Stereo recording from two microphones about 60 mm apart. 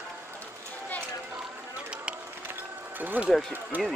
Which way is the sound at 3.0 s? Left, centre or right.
Right.